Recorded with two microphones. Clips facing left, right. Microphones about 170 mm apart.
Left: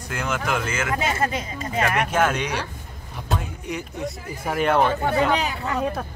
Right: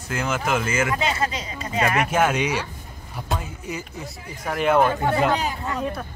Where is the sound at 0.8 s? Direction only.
50° left (ahead or behind).